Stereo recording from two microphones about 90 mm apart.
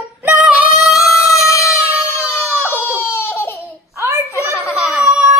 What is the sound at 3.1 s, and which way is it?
Laughter, 25° left (ahead or behind).